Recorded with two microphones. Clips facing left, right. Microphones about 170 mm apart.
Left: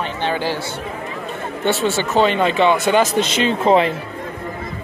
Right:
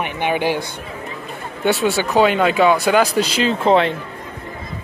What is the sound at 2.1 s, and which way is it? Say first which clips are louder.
Speech: right 1 dB; 5° right (ahead or behind).